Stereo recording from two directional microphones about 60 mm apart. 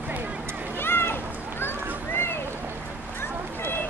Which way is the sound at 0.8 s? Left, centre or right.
Left.